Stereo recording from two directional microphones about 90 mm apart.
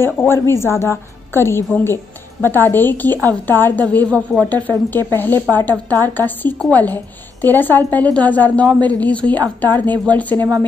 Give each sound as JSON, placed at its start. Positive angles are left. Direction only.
{"t": 0.0, "sound": "a woman's voice", "side_deg": 25}